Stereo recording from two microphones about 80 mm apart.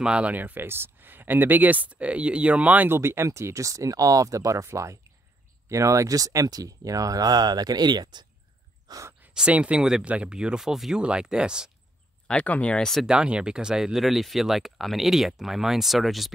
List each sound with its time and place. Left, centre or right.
0.0 s speech: centre
3.0 s speech: right
8.8 s gasp: right
9.3 s speech: centre
12.3 s speech: centre
13.0 s speech: centre